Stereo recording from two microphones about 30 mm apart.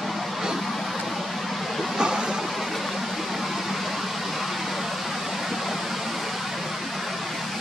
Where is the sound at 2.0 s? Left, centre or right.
Right.